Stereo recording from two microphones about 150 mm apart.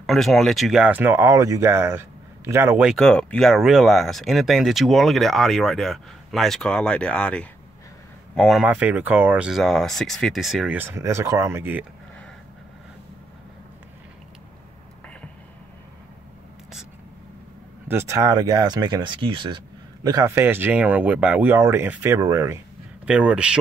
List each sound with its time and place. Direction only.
0.0 s speech: centre (ahead or behind)
2.9 s speech: 5° left (ahead or behind)
8.6 s speech: 10° right (ahead or behind)
9.6 s speech: 5° left (ahead or behind); by 11.8 s 15° right (ahead or behind)
17.8 s speech: 20° right (ahead or behind)
23.0 s speech: 5° right (ahead or behind)